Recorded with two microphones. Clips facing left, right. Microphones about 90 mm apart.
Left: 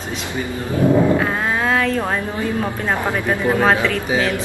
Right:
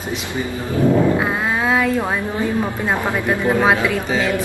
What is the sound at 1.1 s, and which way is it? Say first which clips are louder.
Speech: even; 10° right (ahead or behind).